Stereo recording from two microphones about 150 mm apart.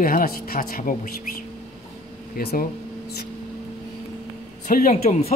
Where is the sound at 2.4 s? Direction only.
90° left.